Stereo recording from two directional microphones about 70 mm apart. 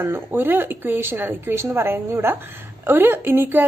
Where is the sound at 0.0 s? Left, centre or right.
Right.